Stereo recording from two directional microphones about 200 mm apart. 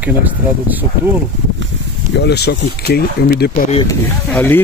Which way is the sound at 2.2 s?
55° left (ahead or behind).